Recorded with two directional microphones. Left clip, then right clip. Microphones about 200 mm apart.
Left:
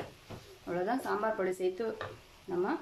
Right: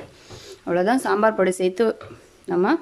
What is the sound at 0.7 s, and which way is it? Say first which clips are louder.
Speech: right 13 dB; 55° right (ahead or behind).